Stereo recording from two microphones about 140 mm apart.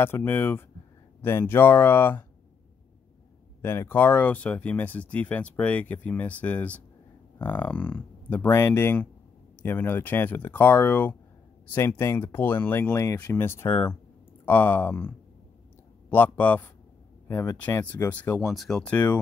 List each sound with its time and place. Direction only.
0.0 s speech: 15° left (ahead or behind)
3.6 s speech: 15° left (ahead or behind)
18.5 s speech: centre (ahead or behind)